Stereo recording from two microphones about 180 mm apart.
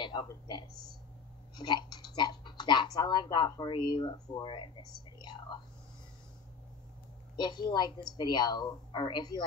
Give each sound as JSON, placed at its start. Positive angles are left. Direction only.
{"t": 0.0, "sound": "speech", "side_deg": 25}
{"t": 5.2, "sound": "whispering", "side_deg": 25}
{"t": 7.3, "sound": "speech", "side_deg": 25}